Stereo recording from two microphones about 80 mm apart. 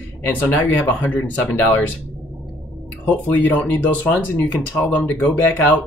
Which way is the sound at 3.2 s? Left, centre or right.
Left.